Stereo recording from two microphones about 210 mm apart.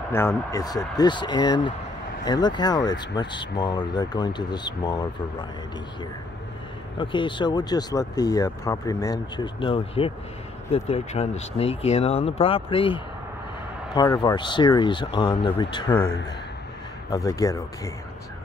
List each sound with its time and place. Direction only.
0.1 s speech: 10° left (ahead or behind)
7.0 s speech: 25° left (ahead or behind)
17.1 s speech: 15° left (ahead or behind)